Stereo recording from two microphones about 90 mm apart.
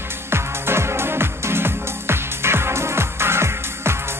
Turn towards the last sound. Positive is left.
turn(degrees=-30)  # may be behind; listen again after turning